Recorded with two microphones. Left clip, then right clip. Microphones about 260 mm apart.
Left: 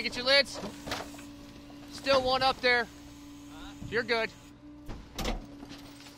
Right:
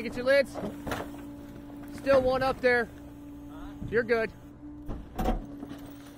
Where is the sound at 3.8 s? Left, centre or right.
Centre.